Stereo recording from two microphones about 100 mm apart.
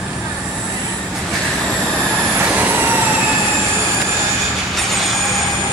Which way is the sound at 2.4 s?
15° right (ahead or behind).